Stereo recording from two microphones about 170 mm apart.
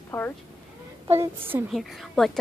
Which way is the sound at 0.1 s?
15° left (ahead or behind).